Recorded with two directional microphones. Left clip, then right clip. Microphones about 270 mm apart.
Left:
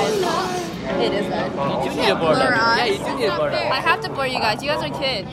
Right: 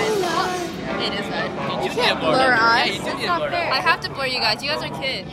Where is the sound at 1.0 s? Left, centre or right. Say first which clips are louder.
Left 4 dB; left.